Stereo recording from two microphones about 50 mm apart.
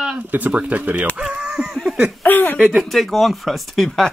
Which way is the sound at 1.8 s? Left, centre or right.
Centre.